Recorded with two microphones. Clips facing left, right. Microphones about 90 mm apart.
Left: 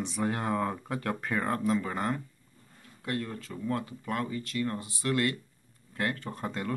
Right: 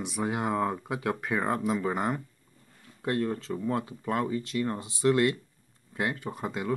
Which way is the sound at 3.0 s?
30° right (ahead or behind).